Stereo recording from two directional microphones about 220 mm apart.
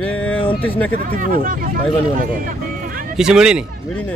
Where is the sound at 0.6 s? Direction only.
5° left (ahead or behind).